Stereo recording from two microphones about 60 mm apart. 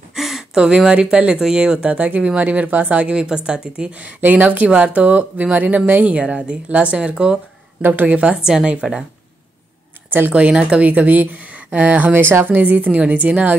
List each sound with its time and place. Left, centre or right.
0.1 s a sound: centre
0.6 s speech: centre
3.2 s speech: centre
4.2 s speech: right
7.8 s speech: right
8.4 s speech: centre
10.3 s speech: centre